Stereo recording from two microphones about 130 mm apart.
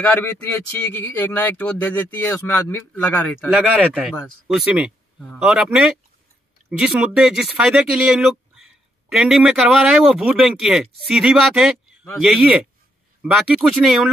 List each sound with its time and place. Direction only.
0.0 s speech: 15° left (ahead or behind)
4.5 s speech: 5° right (ahead or behind)